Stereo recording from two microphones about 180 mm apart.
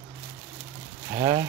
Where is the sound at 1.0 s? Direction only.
25° right (ahead or behind).